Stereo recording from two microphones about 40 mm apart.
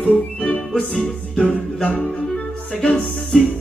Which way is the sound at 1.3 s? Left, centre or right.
Left.